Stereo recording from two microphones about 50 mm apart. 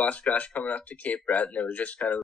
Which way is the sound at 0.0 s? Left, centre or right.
Left.